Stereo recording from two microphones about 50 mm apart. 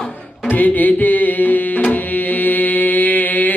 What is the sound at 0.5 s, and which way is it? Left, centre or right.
Music, left.